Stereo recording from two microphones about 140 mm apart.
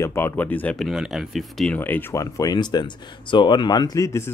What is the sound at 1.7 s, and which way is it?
Speech, 15° left (ahead or behind).